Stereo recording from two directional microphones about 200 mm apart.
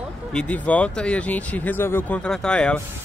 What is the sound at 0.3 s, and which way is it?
Speech, 5° left (ahead or behind).